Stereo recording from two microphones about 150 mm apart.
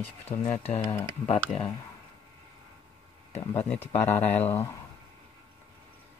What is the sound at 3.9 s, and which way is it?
Speech, 15° left (ahead or behind).